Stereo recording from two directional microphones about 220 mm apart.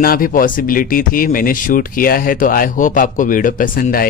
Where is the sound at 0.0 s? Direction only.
40° left (ahead or behind).